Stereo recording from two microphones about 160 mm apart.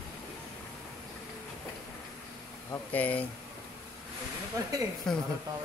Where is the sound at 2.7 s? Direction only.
10° left (ahead or behind).